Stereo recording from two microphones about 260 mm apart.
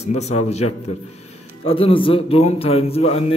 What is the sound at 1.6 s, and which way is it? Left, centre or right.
A man's voice, left.